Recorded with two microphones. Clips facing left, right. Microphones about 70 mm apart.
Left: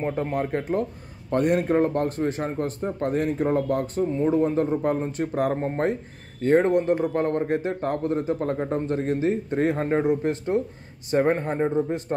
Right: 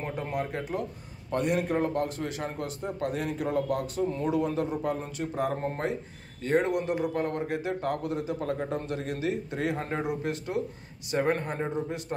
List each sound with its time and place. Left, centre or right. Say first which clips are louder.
0.0 s a man's voice: left 6 dB; left